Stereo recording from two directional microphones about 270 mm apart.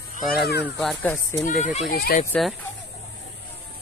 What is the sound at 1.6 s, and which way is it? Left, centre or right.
Speech, left.